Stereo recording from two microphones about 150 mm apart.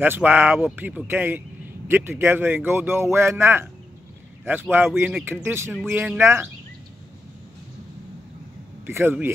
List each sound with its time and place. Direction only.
0.0 s speech: 10° right (ahead or behind)
8.8 s speech: 15° right (ahead or behind)